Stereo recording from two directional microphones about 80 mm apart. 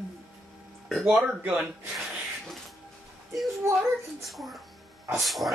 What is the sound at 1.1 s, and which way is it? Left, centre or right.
Speech, centre.